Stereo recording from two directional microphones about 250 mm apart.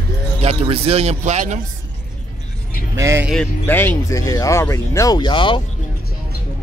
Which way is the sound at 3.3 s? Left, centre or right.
Centre.